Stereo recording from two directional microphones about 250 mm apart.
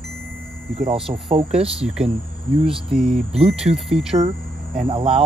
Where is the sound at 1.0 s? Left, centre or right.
Centre.